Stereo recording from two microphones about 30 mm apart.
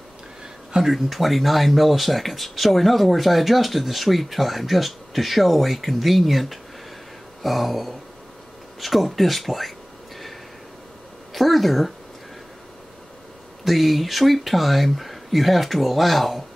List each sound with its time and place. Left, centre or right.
0.8 s speech: centre
11.3 s a woman's voice: centre
13.7 s speech: centre